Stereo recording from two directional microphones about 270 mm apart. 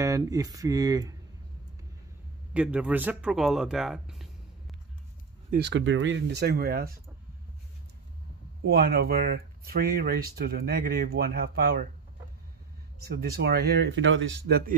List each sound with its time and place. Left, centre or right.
0.0 s speech: centre
2.5 s speech: centre
5.5 s speech: right
8.6 s speech: right
13.0 s speech: right